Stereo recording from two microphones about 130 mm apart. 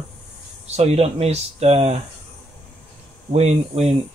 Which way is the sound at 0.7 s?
55° right (ahead or behind).